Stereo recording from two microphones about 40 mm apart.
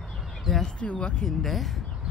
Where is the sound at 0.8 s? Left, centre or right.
Left.